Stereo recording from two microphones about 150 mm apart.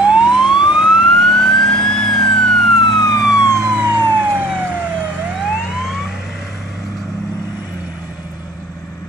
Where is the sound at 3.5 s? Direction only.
20° right (ahead or behind); by 6.4 s centre (ahead or behind).